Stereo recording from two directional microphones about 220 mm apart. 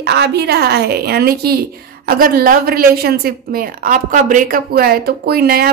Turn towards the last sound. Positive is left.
turn(degrees=-45)  # may be behind; listen again after turning